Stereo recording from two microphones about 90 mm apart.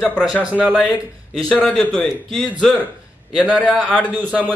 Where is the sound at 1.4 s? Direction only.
5° left (ahead or behind).